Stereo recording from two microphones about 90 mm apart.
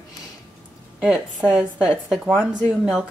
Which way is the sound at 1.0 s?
10° right (ahead or behind).